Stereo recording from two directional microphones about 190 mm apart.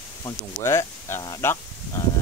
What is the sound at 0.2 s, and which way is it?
Speech, 15° left (ahead or behind).